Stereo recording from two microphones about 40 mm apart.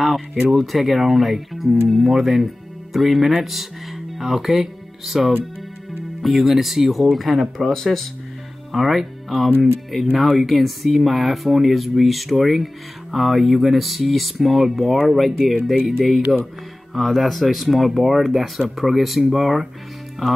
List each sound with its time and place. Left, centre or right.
0.0 s a sound: centre
0.5 s speech: centre
8.7 s speech: centre